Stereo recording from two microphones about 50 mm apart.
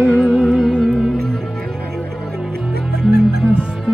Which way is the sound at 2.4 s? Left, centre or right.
Centre.